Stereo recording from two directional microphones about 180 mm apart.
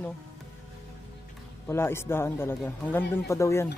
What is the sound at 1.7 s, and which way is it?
A man's voice, 15° left (ahead or behind).